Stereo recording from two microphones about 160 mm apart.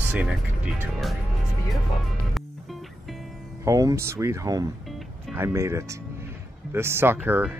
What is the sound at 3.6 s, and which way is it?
Speech, 20° right (ahead or behind).